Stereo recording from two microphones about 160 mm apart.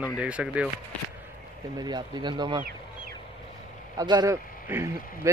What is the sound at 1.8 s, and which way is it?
Speech, 25° right (ahead or behind).